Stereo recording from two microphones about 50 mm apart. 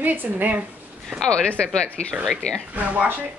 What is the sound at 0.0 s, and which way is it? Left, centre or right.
Speech, right.